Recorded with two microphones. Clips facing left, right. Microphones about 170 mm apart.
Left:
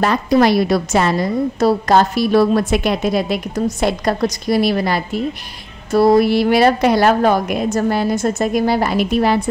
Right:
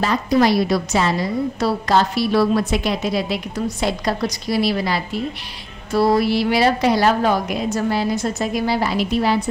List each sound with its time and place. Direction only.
0.0 s a woman's voice: 60° left (ahead or behind)
6.1 s a woman's voice: 50° left (ahead or behind)